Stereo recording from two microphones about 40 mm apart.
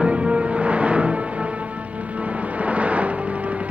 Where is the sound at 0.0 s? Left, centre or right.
Right.